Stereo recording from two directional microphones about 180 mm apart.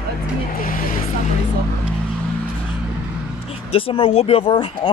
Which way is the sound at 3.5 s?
35° left (ahead or behind).